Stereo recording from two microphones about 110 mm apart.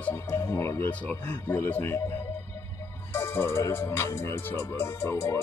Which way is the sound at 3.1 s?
25° left (ahead or behind).